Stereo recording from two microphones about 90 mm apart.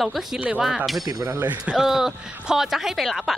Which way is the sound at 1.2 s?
25° right (ahead or behind).